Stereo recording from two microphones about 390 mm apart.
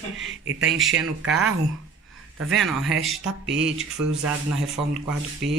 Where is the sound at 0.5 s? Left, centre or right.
Right.